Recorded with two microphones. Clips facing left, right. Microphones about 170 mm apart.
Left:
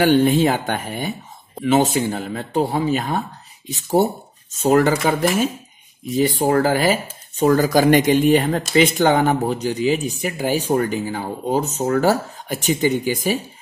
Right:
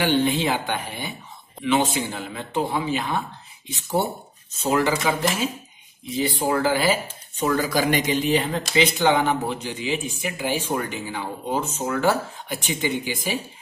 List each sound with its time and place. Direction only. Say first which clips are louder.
0.0 s speech: left 6 dB; 45° left (ahead or behind)